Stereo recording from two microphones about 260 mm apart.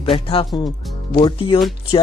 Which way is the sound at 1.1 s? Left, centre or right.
Centre.